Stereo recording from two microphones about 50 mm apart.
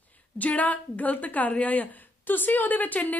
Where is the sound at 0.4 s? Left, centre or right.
Left.